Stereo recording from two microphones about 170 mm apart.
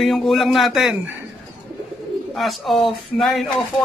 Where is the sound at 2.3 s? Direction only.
Centre (ahead or behind).